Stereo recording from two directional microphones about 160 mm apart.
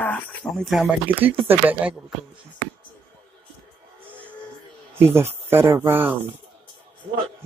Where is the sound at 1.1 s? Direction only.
10° right (ahead or behind).